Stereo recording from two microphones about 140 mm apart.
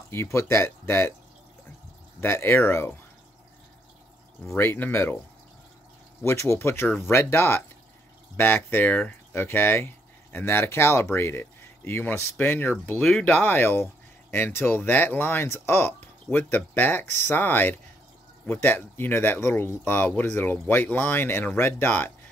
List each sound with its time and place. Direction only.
0.1 s speech: 20° left (ahead or behind)
2.1 s speech: 15° left (ahead or behind)
4.6 s speech: 15° left (ahead or behind)
6.2 s speech: 20° left (ahead or behind)